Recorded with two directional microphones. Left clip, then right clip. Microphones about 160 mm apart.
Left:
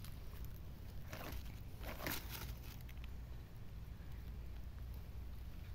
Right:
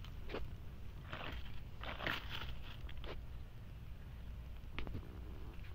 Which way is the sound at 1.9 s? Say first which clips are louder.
Right 5 dB; 25° left (ahead or behind).